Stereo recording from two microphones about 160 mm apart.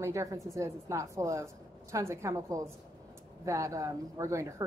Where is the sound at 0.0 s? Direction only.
20° right (ahead or behind).